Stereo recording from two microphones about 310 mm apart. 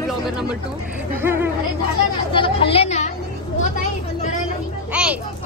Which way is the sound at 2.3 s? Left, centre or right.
Centre.